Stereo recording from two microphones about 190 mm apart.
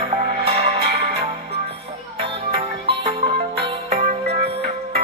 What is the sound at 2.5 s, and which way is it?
Music, 30° right (ahead or behind).